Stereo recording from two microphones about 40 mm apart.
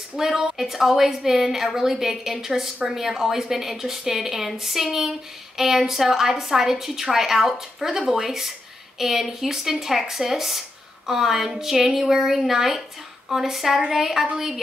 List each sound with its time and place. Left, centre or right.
0.2 s a woman's voice: centre